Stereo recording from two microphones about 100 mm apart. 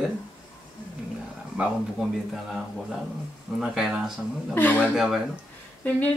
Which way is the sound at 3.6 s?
5° right (ahead or behind).